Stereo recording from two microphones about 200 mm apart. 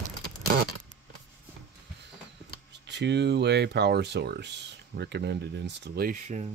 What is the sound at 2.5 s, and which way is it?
Speech, 60° right (ahead or behind).